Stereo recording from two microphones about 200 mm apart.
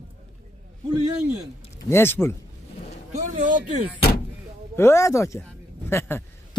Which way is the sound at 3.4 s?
40° right (ahead or behind).